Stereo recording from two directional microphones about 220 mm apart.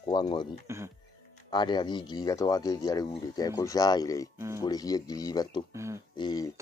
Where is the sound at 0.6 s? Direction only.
10° right (ahead or behind).